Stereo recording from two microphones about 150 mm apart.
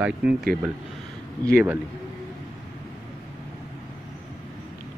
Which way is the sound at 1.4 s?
15° right (ahead or behind).